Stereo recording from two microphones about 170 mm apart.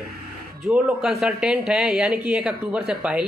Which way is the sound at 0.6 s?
10° right (ahead or behind).